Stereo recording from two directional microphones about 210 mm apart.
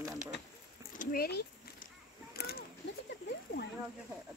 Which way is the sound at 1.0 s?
45° left (ahead or behind).